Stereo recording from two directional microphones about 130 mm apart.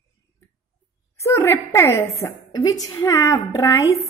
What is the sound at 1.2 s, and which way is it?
A woman's voice, 20° left (ahead or behind).